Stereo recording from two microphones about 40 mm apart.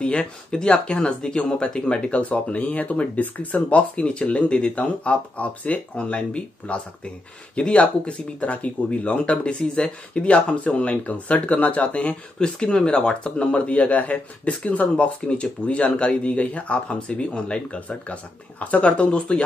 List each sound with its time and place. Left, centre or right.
0.0 s speech: left
12.4 s speech: left
17.7 s speech: left